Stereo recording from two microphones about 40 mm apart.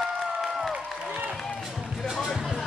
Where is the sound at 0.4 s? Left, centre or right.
Centre.